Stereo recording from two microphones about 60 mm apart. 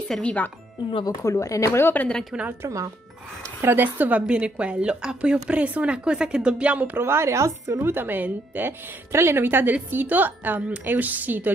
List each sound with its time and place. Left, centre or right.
0.2 s speech: left
1.0 s speech: left
1.7 s speech: left
2.6 s speech: right
3.6 s a woman's voice: right
4.3 s a woman's voice: centre
6.9 s a woman's voice: right
7.8 s a woman's voice: right